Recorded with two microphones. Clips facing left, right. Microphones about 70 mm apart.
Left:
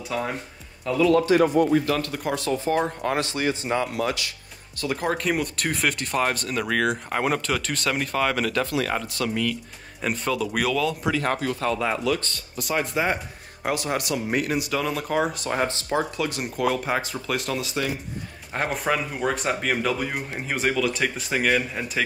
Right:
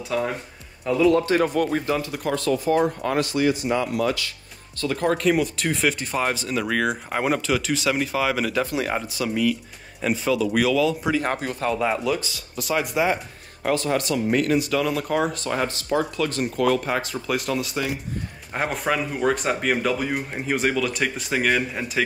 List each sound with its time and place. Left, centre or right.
0.1 s speech: centre
1.1 s a man's voice: right
2.0 s speech: centre
2.3 s speech: left
4.7 s speech: centre
8.6 s speech: centre
11.1 s speech: centre
13.6 s speech: centre
15.6 s speech: left
16.2 s speech: centre